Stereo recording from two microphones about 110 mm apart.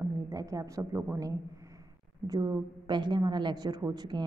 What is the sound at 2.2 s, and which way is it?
A woman's voice, 35° right (ahead or behind).